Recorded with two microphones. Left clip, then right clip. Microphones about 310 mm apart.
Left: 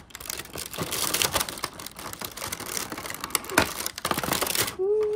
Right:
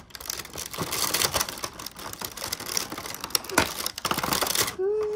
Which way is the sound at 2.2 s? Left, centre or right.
Centre.